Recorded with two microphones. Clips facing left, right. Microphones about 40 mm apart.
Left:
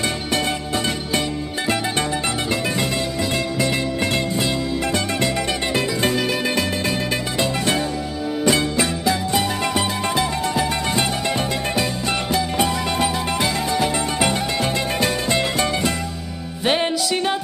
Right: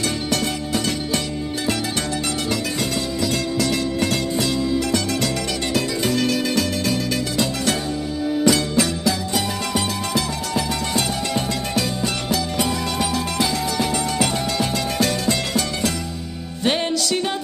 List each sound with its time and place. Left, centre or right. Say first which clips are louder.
4.0 s music: even; left
6.1 s music: right 1 dB; centre
16.6 s music: left 1 dB; centre